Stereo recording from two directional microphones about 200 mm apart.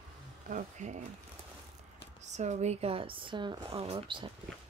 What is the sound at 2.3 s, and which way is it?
Speech, 35° right (ahead or behind).